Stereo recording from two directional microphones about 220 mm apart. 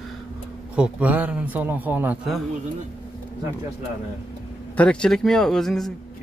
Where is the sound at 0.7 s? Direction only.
5° right (ahead or behind).